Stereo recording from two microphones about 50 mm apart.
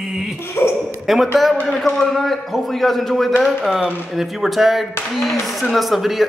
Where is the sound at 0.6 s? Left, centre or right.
Left.